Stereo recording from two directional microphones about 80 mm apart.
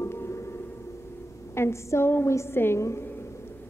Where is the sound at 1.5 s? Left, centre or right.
Left.